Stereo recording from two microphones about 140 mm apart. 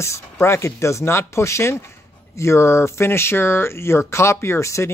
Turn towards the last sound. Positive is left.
turn(degrees=20)  # may be behind; listen again after turning